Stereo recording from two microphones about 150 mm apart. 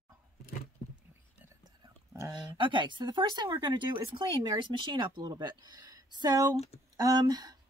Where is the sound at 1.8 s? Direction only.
25° right (ahead or behind).